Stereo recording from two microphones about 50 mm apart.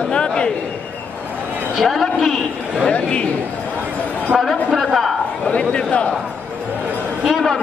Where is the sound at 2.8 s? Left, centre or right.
Left.